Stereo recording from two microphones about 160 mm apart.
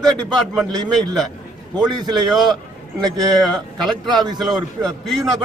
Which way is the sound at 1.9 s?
25° right (ahead or behind).